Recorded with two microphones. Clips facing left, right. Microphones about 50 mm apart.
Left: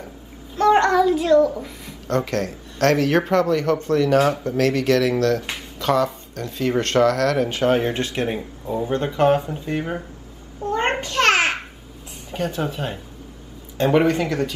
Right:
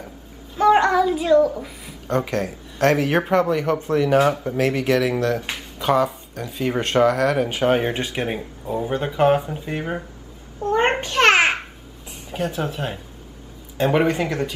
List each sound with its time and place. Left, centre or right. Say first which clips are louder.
0.6 s child singing: even; centre
2.0 s speech: even; centre
10.6 s babbling: right 3 dB; right
12.3 s speech: even; centre